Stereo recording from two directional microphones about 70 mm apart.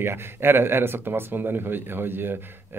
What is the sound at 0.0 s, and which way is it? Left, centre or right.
Speech, right.